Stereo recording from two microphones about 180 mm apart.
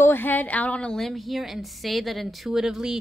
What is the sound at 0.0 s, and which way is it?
A woman's voice, 10° left (ahead or behind).